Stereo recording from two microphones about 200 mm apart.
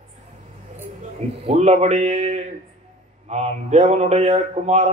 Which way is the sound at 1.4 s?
35° right (ahead or behind).